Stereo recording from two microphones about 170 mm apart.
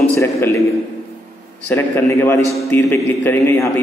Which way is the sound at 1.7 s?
15° left (ahead or behind).